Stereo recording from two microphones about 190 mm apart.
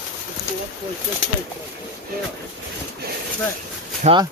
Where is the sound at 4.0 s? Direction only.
25° right (ahead or behind).